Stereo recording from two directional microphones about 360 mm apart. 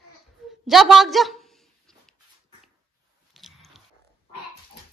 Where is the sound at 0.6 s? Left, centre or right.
Centre.